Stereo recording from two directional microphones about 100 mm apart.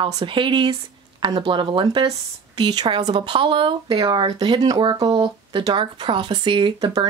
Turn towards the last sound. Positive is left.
turn(degrees=-35)  # may be behind; listen again after turning